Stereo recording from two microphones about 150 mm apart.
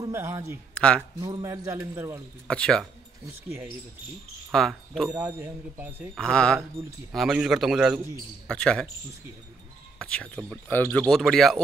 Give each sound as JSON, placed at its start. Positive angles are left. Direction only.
{"t": 0.0, "sound": "a man's voice", "side_deg": -20}
{"t": 0.7, "sound": "speech", "side_deg": 5}
{"t": 1.2, "sound": "a man's voice", "side_deg": -25}
{"t": 2.4, "sound": "speech", "side_deg": 5}
{"t": 4.5, "sound": "speech", "side_deg": 5}
{"t": 5.2, "sound": "speech", "side_deg": -15}
{"t": 6.1, "sound": "speech", "side_deg": 5}
{"t": 9.9, "sound": "speech", "side_deg": 5}